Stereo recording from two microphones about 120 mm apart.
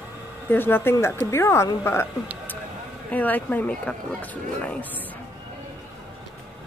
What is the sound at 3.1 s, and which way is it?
A woman's voice, 15° left (ahead or behind).